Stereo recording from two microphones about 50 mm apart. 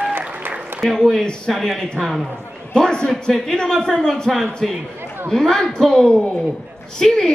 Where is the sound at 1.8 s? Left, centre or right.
Centre.